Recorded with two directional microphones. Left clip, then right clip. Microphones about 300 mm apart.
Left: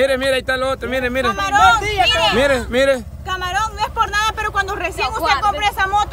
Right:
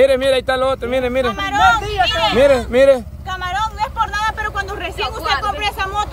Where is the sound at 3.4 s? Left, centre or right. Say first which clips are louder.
Right 1 dB; left.